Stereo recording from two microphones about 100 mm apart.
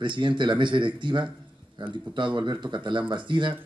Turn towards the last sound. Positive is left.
turn(degrees=-50)  # may be behind; listen again after turning